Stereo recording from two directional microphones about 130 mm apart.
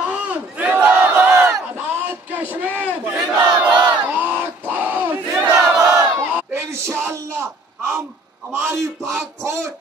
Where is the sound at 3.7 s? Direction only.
35° right (ahead or behind).